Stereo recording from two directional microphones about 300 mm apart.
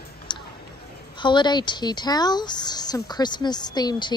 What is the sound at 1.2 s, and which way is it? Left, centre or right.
A woman's voice, centre.